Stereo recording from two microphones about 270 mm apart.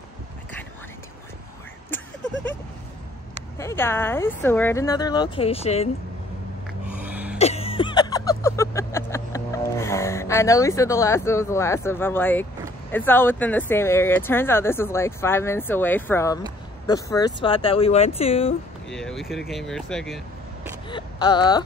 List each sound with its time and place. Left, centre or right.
3.5 s speech: centre
6.9 s a sound: centre
7.3 s a sound: left; by 12.4 s centre
12.9 s speech: centre
18.9 s speech: centre
20.9 s speech: centre